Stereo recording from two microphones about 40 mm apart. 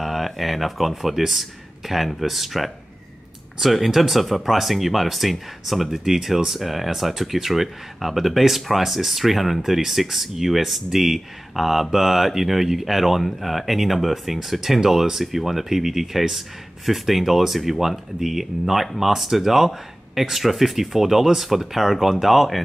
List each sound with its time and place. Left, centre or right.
0.0 s speech: centre